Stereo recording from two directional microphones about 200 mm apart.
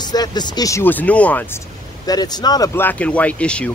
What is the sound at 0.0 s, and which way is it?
Speech, 20° left (ahead or behind).